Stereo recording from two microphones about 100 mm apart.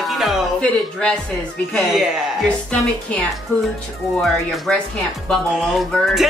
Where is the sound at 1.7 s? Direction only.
Centre (ahead or behind).